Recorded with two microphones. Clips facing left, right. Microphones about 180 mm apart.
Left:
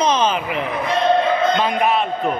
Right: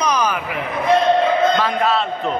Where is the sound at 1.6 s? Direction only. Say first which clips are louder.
Even; 15° left (ahead or behind).